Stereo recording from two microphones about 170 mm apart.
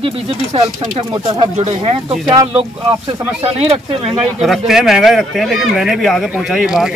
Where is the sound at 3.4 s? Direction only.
35° right (ahead or behind).